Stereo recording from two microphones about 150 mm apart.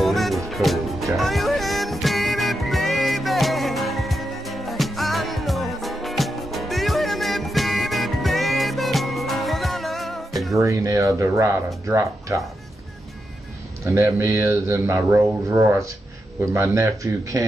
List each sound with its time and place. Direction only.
0.0 s music: centre (ahead or behind)
10.5 s speech: 20° right (ahead or behind)
13.8 s speech: 15° right (ahead or behind)